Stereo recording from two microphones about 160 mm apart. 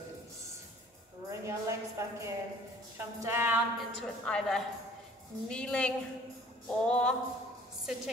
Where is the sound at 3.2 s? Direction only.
15° right (ahead or behind).